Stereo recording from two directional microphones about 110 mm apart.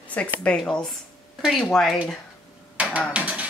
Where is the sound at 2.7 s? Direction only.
10° right (ahead or behind).